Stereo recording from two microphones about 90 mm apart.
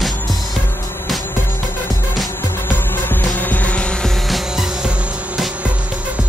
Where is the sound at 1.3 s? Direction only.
25° left (ahead or behind); by 6.2 s 15° right (ahead or behind).